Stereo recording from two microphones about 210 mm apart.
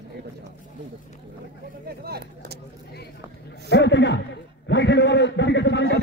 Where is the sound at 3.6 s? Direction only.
55° left (ahead or behind).